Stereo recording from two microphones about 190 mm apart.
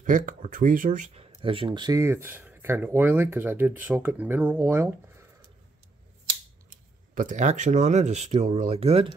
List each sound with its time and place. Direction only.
0.0 s speech: 45° right (ahead or behind); by 4.8 s 10° right (ahead or behind)
7.2 s speech: 40° right (ahead or behind)